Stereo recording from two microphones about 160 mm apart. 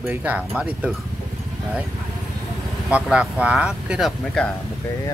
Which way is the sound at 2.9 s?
10° right (ahead or behind).